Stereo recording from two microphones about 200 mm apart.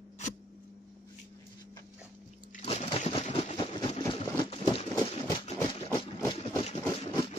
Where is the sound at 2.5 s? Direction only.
30° left (ahead or behind).